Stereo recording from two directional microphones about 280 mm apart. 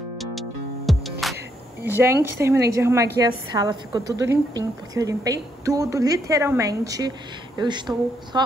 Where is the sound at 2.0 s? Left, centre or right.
Centre.